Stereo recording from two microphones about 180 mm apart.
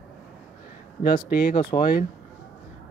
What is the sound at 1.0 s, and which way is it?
Speech, 55° left (ahead or behind).